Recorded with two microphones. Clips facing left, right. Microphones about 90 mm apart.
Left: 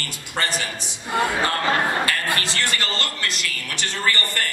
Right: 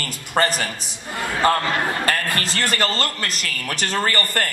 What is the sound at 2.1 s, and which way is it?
A man's voice, 40° right (ahead or behind).